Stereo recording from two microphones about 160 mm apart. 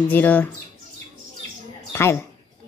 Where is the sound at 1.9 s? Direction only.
15° left (ahead or behind).